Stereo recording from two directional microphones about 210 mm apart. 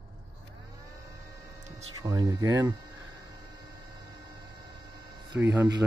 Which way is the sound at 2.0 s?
15° right (ahead or behind).